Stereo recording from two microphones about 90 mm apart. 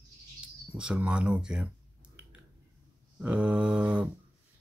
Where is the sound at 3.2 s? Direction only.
15° right (ahead or behind).